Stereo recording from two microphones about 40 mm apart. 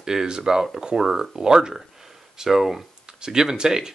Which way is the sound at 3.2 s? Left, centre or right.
Centre.